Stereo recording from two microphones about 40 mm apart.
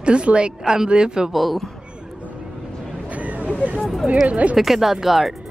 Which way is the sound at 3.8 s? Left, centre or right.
Centre.